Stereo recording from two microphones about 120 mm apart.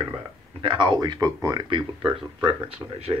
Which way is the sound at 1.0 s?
30° right (ahead or behind).